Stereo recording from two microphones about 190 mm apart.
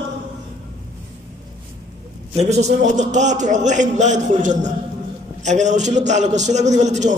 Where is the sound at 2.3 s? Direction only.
35° right (ahead or behind).